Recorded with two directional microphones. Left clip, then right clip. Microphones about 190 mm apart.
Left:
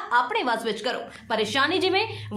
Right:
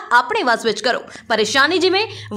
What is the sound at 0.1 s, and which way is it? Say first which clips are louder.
A woman's voice: right 8 dB; 35° right (ahead or behind).